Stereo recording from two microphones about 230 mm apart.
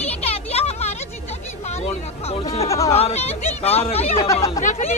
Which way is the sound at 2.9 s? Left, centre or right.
Left.